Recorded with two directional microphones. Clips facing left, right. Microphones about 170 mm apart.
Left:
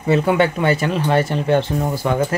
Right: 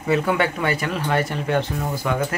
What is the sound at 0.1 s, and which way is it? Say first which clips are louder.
Speech: left 4 dB; 25° left (ahead or behind).